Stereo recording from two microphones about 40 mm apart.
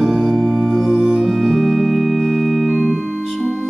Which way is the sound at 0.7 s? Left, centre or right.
Centre.